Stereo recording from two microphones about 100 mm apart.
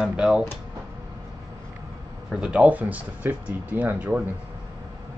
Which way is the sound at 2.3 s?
10° right (ahead or behind).